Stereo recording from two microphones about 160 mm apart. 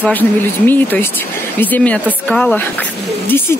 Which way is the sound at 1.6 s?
10° left (ahead or behind).